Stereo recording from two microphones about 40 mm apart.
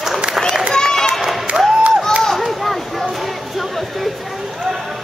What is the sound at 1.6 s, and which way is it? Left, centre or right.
Music, right.